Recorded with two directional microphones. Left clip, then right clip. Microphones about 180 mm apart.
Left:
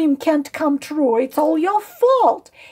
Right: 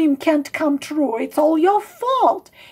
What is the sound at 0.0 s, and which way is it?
A woman's voice, 30° left (ahead or behind).